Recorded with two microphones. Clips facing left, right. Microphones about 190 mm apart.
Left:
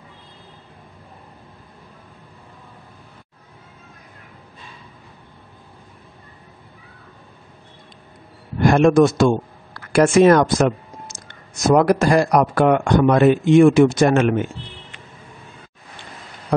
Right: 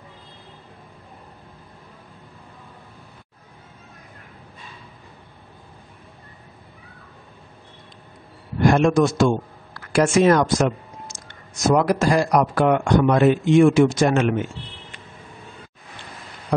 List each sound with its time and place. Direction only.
8.7 s speech: 55° left (ahead or behind)